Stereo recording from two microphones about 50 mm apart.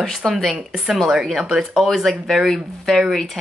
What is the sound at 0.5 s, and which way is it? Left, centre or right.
Speech, centre.